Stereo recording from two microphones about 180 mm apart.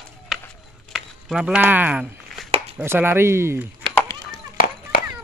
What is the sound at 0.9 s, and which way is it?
Speech, 5° right (ahead or behind).